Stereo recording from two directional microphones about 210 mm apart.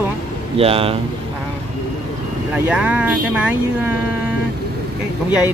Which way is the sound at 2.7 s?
5° right (ahead or behind).